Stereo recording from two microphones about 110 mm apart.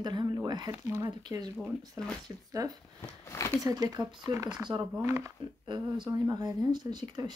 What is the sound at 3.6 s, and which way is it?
Speech, 35° right (ahead or behind).